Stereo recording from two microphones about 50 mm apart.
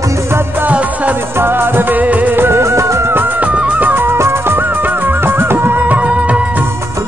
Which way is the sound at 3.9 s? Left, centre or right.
Right.